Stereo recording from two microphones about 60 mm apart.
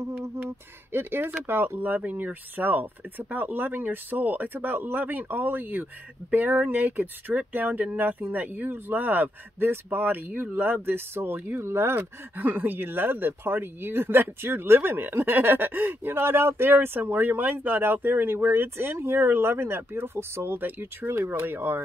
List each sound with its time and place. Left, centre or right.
0.2 s speech: right